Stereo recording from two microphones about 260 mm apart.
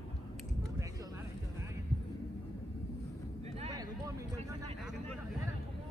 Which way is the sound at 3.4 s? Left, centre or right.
Right.